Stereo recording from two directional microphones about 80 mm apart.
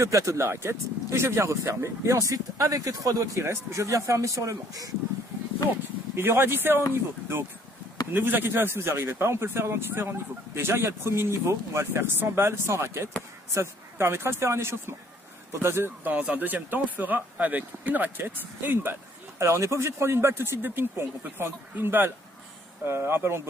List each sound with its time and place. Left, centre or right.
0.0 s speech: right
6.1 s speech: right
8.1 s speech: right